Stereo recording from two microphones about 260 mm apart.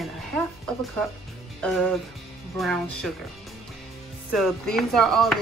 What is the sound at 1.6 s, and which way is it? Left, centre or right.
Speech, centre.